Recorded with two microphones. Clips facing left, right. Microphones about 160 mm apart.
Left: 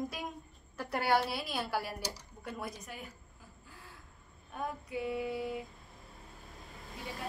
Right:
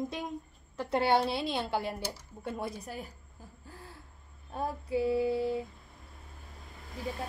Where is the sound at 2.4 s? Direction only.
25° right (ahead or behind).